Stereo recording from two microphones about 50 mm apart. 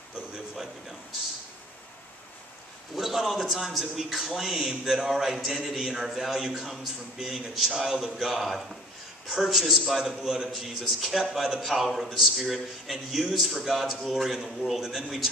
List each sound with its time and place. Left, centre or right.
3.0 s a man's voice: centre
13.3 s a man's voice: centre